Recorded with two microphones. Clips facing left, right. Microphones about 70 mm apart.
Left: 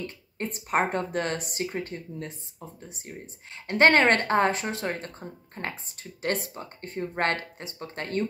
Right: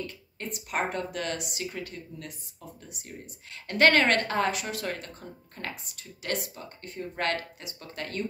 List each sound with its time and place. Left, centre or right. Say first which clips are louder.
0.0 s speech: left 3 dB; left
3.6 s speech: left 2 dB; left